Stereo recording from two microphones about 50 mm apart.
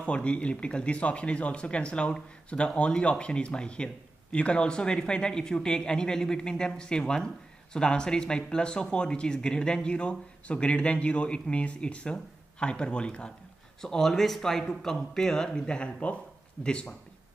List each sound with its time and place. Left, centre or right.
0.0 s speech: left